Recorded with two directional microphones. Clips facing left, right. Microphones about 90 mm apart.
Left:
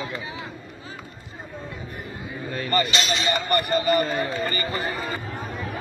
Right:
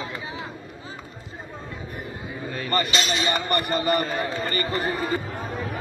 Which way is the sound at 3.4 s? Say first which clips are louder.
Left 2 dB; 25° right (ahead or behind).